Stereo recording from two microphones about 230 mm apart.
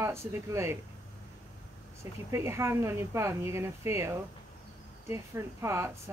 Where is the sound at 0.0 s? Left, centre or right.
Centre.